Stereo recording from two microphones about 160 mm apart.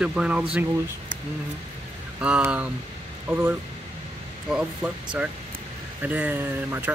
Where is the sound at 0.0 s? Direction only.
5° right (ahead or behind).